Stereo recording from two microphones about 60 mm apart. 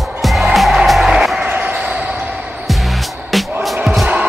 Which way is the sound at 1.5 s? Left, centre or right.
Right.